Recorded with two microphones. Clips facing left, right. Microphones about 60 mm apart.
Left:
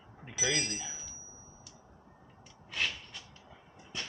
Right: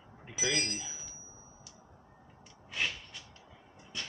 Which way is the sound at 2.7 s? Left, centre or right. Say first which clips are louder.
Even; centre.